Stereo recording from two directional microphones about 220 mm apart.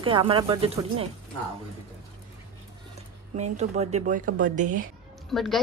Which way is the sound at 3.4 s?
30° right (ahead or behind).